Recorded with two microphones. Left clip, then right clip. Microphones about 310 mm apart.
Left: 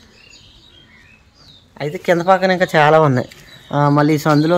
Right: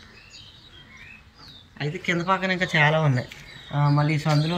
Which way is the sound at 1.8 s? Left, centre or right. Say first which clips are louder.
Left 10 dB; centre.